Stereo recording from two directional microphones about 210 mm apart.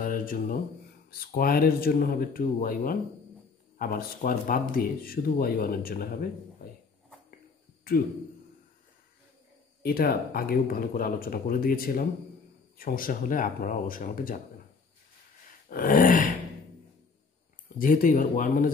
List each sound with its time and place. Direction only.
0.0 s a sound: 40° left (ahead or behind)
1.2 s speech: 45° left (ahead or behind)
7.9 s speech: 45° left (ahead or behind)
9.8 s speech: 45° left (ahead or behind)
15.7 s speech: 40° left (ahead or behind)
17.7 s speech: 40° left (ahead or behind)